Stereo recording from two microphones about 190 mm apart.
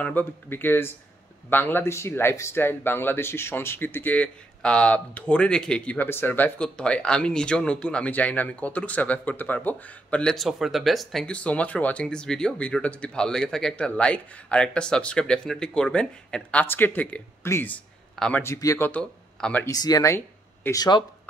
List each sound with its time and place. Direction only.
0.0 s a man's voice: 10° left (ahead or behind)
18.4 s a man's voice: 15° left (ahead or behind)
19.7 s speech: 20° left (ahead or behind)